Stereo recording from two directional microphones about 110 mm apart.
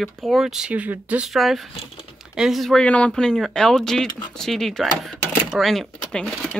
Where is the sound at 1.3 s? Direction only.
Centre (ahead or behind).